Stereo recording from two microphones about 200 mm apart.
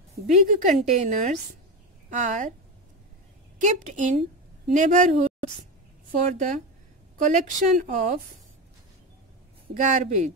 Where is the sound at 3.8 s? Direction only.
35° right (ahead or behind).